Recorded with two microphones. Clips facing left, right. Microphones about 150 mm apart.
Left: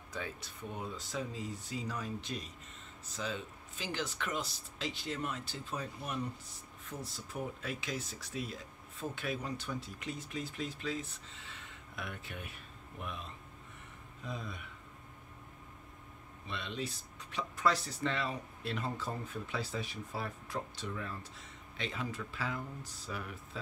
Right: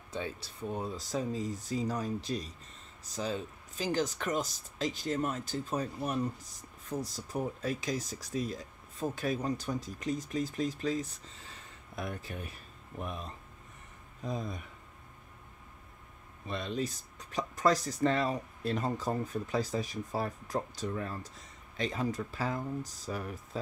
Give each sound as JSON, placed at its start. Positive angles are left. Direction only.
{"t": 0.1, "sound": "speech", "side_deg": -30}
{"t": 16.4, "sound": "speech", "side_deg": -40}